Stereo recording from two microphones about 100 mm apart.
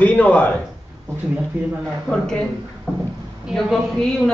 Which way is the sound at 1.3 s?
15° right (ahead or behind).